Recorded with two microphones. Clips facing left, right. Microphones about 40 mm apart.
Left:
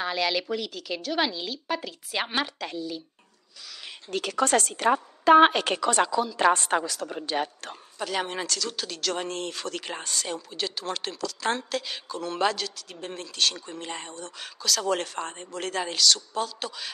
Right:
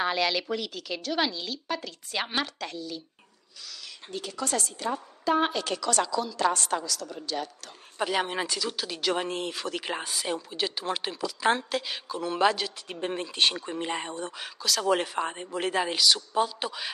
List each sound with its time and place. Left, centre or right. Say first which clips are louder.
0.0 s a woman's voice: even; centre
4.1 s speech: left 8 dB; left
4.5 s a woman's voice: left 7 dB; left
5.8 s a woman's voice: left 2 dB; left
8.0 s speech: right 2 dB; centre
12.7 s speech: right 5 dB; right
14.3 s speech: left 4 dB; centre